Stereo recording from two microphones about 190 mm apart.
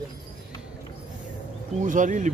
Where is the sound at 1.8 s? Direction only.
40° right (ahead or behind).